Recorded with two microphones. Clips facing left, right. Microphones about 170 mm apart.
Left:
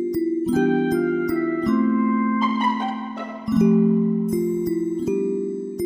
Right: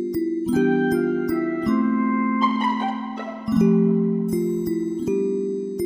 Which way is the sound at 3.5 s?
Centre (ahead or behind).